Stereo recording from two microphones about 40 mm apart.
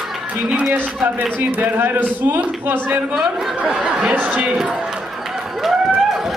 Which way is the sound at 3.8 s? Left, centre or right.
Right.